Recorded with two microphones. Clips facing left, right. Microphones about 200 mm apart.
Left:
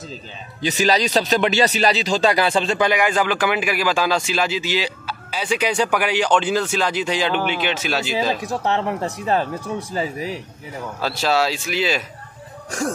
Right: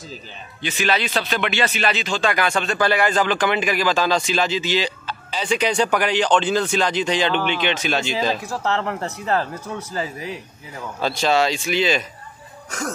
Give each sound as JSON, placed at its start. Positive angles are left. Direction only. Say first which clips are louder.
{"t": 0.6, "sound": "speech", "louder": "left 4 dB", "side_deg": 40}
{"t": 2.8, "sound": "speech", "louder": "right 2 dB", "side_deg": 15}
{"t": 8.5, "sound": "speech", "louder": "left 2 dB", "side_deg": 15}
{"t": 11.0, "sound": "speech", "louder": "right 1 dB", "side_deg": 5}